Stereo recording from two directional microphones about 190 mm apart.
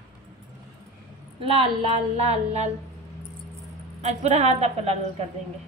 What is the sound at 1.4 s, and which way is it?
Speech, 30° right (ahead or behind).